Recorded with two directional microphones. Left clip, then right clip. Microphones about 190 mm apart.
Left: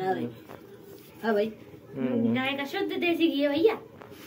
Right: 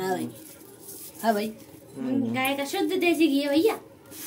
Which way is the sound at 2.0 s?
5° left (ahead or behind).